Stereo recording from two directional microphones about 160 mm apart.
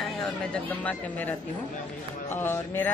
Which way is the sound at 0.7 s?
10° left (ahead or behind).